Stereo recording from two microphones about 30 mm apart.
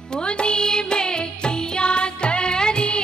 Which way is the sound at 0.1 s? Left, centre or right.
Left.